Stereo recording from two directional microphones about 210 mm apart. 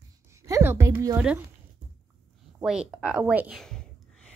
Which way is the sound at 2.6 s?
5° right (ahead or behind).